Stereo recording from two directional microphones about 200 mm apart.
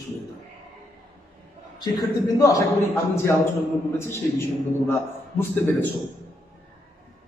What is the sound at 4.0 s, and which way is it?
A man's voice, 10° left (ahead or behind).